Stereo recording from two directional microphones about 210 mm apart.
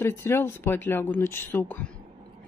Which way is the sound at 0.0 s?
10° left (ahead or behind).